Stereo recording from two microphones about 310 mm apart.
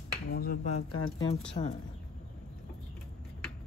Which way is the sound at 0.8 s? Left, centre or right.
Left.